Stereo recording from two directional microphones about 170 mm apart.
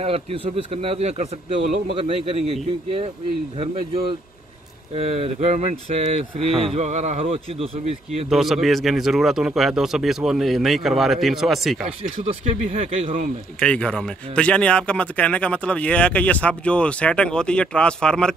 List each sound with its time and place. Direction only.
0.0 s speech: 35° right (ahead or behind)
4.9 s speech: 35° right (ahead or behind)
8.3 s a man's voice: centre (ahead or behind)
12.0 s speech: 40° right (ahead or behind)
13.6 s speech: 5° left (ahead or behind)